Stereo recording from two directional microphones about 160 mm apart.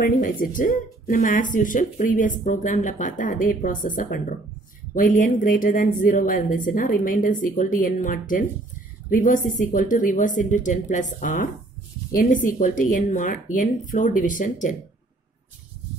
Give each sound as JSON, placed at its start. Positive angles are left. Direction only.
{"t": 0.0, "sound": "speech", "side_deg": 60}